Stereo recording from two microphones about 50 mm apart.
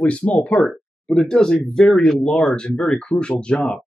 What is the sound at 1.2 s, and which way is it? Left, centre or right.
Speech, centre.